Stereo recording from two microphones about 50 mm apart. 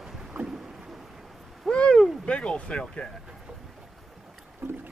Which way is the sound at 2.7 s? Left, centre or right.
Centre.